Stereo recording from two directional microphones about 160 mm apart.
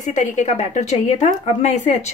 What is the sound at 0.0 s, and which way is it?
A woman's voice, 50° left (ahead or behind).